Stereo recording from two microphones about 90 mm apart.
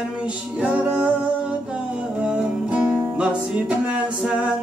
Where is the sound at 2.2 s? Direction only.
10° right (ahead or behind).